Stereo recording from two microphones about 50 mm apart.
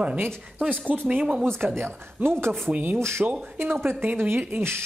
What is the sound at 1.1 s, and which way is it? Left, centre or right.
Speech, right.